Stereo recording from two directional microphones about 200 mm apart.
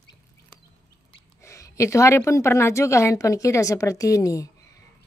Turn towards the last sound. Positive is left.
turn(degrees=15)  # may be behind; listen again after turning